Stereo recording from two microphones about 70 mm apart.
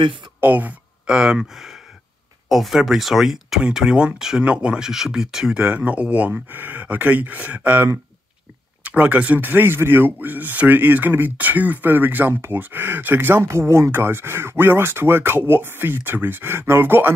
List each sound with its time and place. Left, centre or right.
0.4 s a sound: right
1.1 s speech: centre; by 13.4 s right
13.4 s speech: right